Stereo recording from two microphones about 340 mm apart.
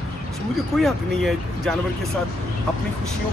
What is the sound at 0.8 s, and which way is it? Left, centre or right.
Speech, centre.